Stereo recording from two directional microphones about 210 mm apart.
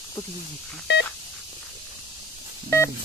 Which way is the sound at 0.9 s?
55° left (ahead or behind).